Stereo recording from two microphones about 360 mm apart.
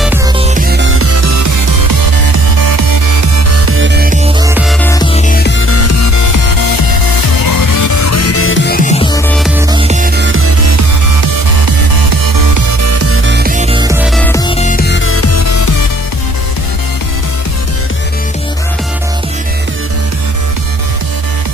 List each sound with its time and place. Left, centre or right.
0.4 s music: right
2.5 s music: right
3.6 s music: right
4.4 s music: centre
4.8 s music: centre; by 6.2 s left
7.4 s music: left; by 9.2 s centre
9.7 s music: centre; by 10.9 s right
11.6 s music: right
12.8 s music: right; by 14.5 s centre
14.6 s music: left